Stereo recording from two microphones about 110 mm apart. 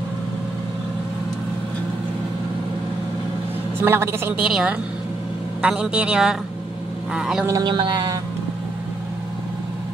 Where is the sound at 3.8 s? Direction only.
20° right (ahead or behind).